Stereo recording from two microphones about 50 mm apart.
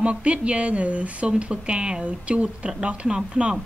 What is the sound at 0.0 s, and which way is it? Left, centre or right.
A woman's voice, right.